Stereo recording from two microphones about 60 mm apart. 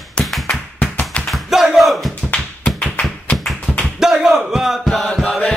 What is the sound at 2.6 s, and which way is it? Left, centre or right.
Tap, centre.